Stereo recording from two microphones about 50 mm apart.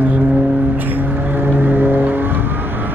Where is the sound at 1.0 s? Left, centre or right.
Right.